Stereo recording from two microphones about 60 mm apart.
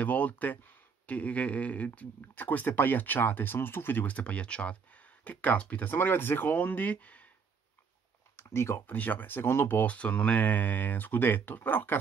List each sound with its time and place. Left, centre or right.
0.0 s speech: left
5.9 s speech: left
8.4 s speech: left
8.8 s speech: left